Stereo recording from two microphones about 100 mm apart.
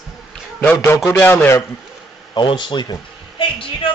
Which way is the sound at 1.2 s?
25° left (ahead or behind).